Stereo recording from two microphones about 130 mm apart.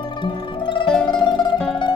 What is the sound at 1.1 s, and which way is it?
Music, 35° left (ahead or behind).